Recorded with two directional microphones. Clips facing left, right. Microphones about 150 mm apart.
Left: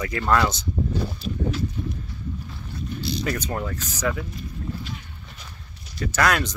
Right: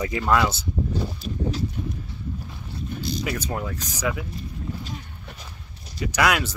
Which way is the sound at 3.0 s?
45° right (ahead or behind).